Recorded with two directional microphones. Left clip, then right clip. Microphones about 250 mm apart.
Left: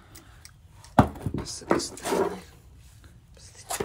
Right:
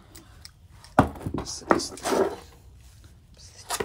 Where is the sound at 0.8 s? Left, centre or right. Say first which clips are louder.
Even; centre.